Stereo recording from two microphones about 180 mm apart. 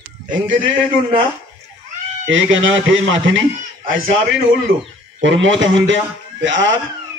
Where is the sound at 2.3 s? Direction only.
90° right.